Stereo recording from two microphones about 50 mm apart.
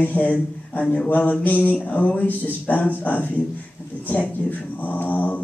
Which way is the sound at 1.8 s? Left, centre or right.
Left.